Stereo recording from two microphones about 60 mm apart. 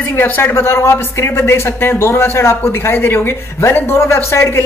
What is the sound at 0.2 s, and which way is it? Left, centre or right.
A woman's voice, left.